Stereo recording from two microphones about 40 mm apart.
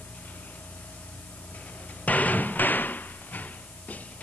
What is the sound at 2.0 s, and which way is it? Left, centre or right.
Hammer, left.